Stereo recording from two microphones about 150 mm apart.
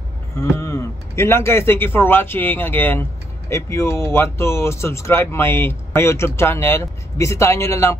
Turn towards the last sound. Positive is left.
turn(degrees=15)  # may be behind; listen again after turning